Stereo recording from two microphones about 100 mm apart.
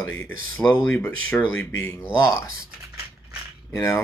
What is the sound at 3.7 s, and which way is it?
Speech, 30° left (ahead or behind).